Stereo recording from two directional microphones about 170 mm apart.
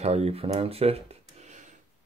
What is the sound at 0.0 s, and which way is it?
Speech, 40° right (ahead or behind).